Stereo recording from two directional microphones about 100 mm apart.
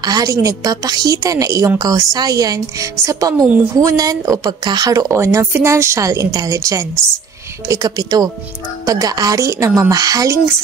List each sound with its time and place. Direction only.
0.0 s speech: 40° right (ahead or behind)